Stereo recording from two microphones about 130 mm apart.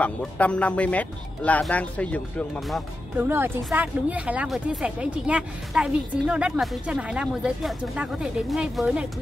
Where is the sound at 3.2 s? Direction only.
15° right (ahead or behind).